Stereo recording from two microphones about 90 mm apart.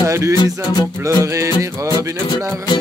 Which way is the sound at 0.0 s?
35° right (ahead or behind).